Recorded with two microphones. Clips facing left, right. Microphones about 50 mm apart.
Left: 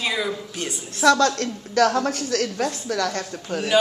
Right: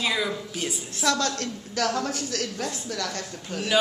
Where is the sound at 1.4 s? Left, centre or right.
Left.